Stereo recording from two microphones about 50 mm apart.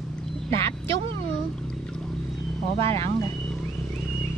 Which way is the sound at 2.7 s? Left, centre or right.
Left.